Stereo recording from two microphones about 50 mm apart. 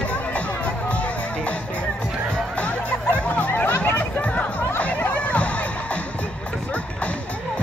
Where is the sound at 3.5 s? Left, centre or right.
Left.